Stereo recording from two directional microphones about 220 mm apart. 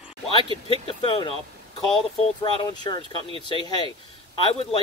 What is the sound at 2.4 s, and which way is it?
Speech, 20° left (ahead or behind).